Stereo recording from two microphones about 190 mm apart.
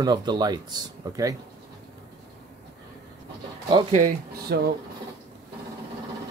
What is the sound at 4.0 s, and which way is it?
Speech, 50° right (ahead or behind).